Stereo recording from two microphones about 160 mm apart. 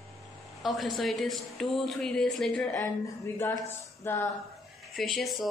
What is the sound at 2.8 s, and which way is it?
Speech, 15° left (ahead or behind).